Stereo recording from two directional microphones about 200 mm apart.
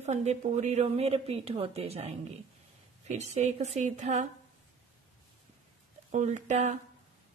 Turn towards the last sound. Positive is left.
turn(degrees=-35)  # may be behind; listen again after turning